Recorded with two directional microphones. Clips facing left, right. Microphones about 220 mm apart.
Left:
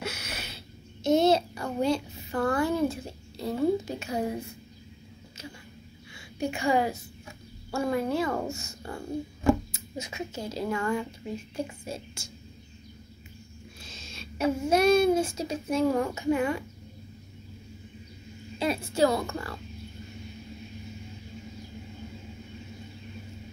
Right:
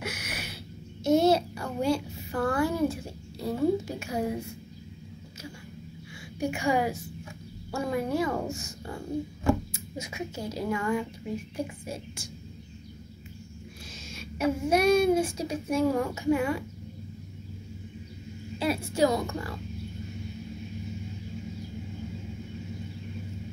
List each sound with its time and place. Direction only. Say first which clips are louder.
0.0 s a sound: even; 15° right (ahead or behind)
1.0 s a child's voice: even; 10° right (ahead or behind)
6.4 s a woman's voice: left 1 dB; 10° right (ahead or behind)
13.9 s a sound: right 3 dB; 10° right (ahead or behind)
14.7 s speech: left 1 dB; 10° right (ahead or behind)
18.9 s speech: left 1 dB; 15° right (ahead or behind)